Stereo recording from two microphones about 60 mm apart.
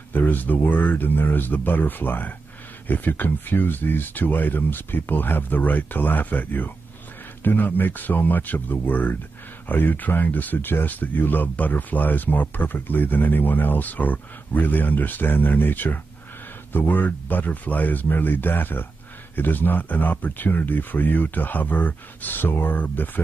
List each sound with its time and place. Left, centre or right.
0.1 s speech: left